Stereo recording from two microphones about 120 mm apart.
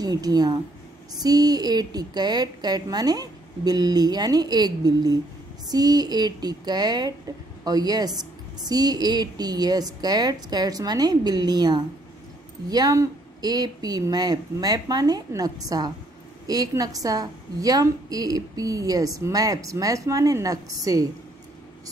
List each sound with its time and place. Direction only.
0.0 s a woman's voice: 35° right (ahead or behind)